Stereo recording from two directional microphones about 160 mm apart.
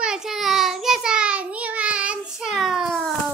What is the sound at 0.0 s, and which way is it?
Child singing, 5° right (ahead or behind).